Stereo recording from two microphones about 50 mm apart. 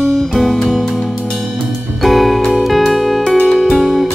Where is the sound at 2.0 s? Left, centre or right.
Centre.